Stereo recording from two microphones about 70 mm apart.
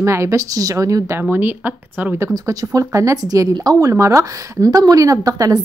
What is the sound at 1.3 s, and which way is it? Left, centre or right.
Speech, right.